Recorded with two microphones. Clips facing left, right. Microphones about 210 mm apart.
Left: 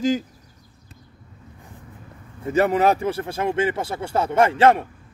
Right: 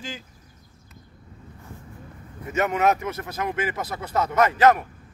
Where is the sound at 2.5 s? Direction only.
30° left (ahead or behind).